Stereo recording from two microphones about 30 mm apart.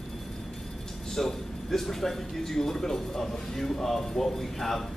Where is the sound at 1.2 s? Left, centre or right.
Centre.